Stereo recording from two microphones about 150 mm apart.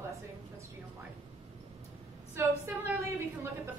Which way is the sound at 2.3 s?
10° right (ahead or behind).